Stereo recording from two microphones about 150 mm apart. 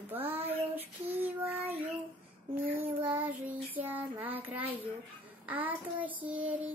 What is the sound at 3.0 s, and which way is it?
Child singing, 10° right (ahead or behind).